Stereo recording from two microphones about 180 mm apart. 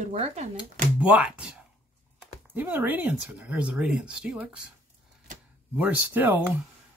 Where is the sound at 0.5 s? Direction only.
5° right (ahead or behind).